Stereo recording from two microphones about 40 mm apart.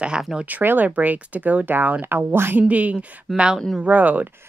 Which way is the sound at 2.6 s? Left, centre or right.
Right.